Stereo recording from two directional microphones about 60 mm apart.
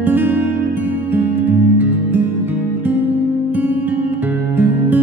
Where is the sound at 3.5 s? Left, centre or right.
Right.